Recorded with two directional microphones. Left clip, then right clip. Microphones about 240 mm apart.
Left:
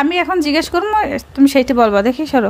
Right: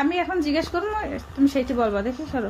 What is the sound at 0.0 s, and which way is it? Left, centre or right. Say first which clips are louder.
Speech: left 8 dB; left.